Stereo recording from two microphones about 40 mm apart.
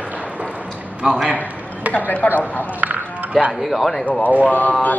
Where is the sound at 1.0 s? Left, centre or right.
Right.